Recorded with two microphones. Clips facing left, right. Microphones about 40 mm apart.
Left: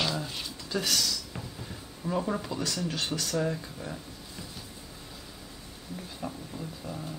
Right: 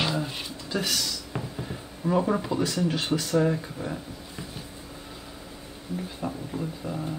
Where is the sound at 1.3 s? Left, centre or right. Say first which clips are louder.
Right 7 dB; right.